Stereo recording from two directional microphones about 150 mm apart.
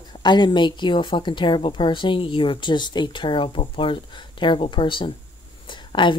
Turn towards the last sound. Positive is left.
turn(degrees=35)  # may be behind; listen again after turning